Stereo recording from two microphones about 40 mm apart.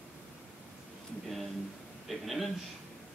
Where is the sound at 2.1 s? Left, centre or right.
Centre.